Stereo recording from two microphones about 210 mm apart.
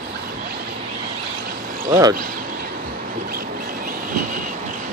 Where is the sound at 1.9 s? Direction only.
20° right (ahead or behind).